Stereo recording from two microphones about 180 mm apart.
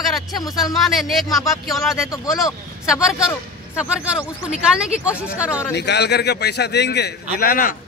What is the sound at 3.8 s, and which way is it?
Speech, 5° right (ahead or behind).